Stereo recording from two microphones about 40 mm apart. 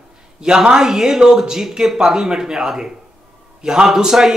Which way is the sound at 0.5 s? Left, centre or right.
Centre.